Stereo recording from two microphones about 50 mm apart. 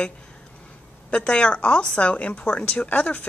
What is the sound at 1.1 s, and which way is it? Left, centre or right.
A woman's voice, centre.